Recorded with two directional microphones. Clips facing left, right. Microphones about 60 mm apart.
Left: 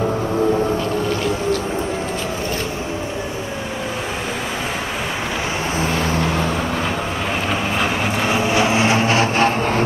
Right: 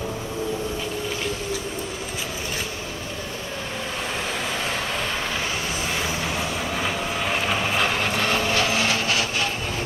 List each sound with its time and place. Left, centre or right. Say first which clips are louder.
7.4 s vehicle: left 3 dB; centre; by 9.5 s left